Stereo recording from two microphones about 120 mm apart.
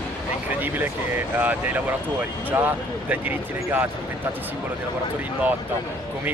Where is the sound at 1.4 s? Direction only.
15° right (ahead or behind).